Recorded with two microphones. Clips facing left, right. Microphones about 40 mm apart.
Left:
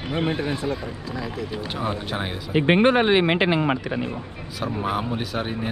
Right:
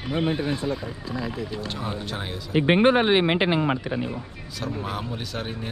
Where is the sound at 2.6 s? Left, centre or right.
Left.